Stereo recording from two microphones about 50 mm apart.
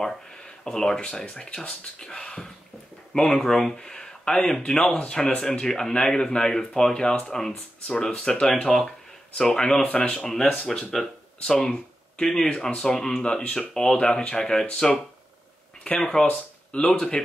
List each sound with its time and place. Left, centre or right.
0.7 s speech: centre
9.8 s speech: left
10.1 s speech: centre
16.0 s speech: centre